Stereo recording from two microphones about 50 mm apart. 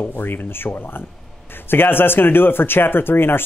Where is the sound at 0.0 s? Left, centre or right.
Left.